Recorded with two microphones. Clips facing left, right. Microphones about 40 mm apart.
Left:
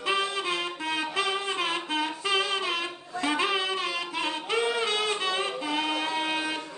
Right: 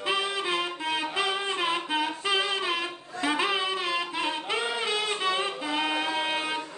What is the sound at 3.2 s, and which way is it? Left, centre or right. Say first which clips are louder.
Music: even; centre.